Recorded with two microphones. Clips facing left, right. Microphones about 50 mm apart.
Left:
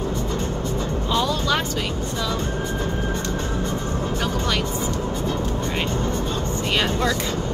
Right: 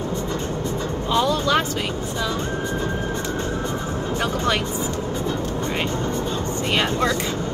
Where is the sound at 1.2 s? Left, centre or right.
Centre.